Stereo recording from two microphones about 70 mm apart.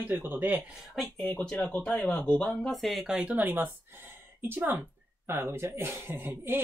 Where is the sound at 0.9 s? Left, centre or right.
Centre.